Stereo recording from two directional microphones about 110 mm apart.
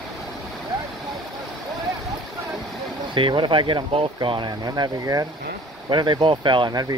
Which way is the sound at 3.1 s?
50° right (ahead or behind).